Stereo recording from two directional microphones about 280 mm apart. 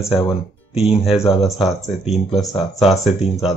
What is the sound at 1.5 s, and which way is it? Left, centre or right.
Speech, centre.